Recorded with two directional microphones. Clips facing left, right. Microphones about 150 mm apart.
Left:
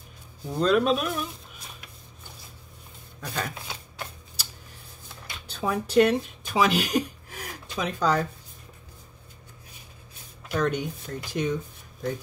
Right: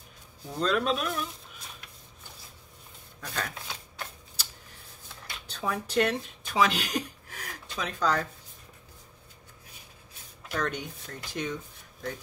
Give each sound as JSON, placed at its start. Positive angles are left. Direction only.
{"t": 0.6, "sound": "speech", "side_deg": 10}
{"t": 3.2, "sound": "typewriter", "side_deg": 10}
{"t": 5.2, "sound": "speech", "side_deg": 10}
{"t": 10.5, "sound": "speech", "side_deg": 10}